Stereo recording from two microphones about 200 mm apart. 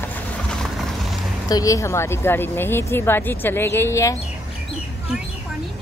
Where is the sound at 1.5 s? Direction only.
15° left (ahead or behind).